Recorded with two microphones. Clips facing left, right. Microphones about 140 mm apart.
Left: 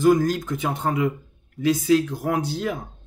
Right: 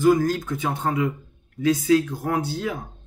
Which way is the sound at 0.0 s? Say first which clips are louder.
Even; 15° left (ahead or behind).